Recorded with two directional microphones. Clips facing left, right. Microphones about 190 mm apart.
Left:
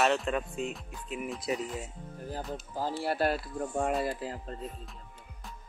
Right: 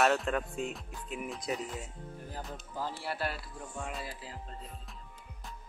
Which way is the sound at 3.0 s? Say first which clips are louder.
Left 8 dB; 45° left (ahead or behind).